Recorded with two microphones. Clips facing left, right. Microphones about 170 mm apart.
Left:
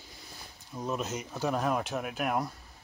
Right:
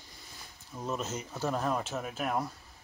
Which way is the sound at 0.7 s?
10° left (ahead or behind).